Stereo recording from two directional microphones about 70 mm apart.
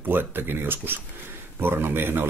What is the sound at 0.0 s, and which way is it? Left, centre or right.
Speech, right.